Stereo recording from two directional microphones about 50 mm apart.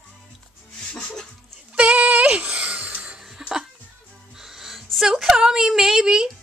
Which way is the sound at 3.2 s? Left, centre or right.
Centre.